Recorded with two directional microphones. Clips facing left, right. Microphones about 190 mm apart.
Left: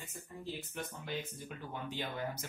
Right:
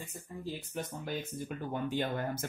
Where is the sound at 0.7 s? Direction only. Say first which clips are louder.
Right 5 dB; 45° right (ahead or behind).